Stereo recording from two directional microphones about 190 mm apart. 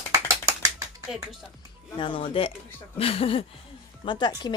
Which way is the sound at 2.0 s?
25° left (ahead or behind).